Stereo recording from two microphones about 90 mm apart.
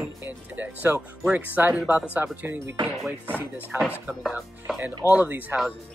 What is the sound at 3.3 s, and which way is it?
Speech, 20° left (ahead or behind).